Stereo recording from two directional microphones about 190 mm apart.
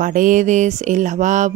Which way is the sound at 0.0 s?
45° right (ahead or behind).